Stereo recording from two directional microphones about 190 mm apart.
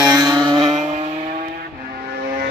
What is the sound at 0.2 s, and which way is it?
Vehicle, 20° right (ahead or behind).